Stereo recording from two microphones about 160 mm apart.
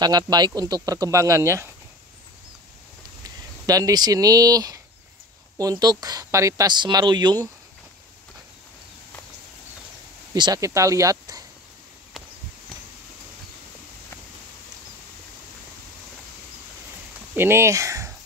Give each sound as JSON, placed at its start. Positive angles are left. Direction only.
{"t": 0.0, "sound": "speech", "side_deg": -25}
{"t": 3.3, "sound": "speech", "side_deg": -20}
{"t": 10.3, "sound": "speech", "side_deg": -25}
{"t": 17.3, "sound": "speech", "side_deg": -15}